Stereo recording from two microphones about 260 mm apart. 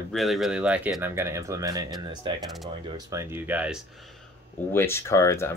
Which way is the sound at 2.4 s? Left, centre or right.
Centre.